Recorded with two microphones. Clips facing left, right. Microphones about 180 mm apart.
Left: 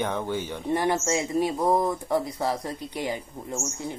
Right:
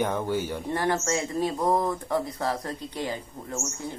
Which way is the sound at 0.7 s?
15° left (ahead or behind).